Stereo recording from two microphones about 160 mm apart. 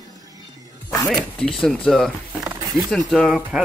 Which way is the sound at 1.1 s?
5° left (ahead or behind).